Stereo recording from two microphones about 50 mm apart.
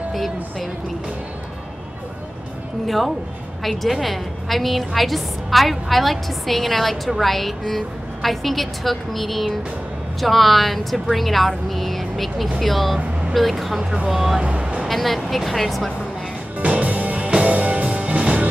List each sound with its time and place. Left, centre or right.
0.1 s speech: centre
3.6 s a woman's voice: centre
14.4 s music: right
14.9 s speech: centre
16.5 s music: right